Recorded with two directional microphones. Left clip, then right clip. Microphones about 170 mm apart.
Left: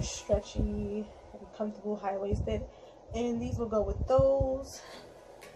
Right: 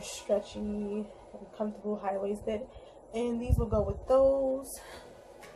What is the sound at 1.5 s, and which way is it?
Speech, 10° right (ahead or behind).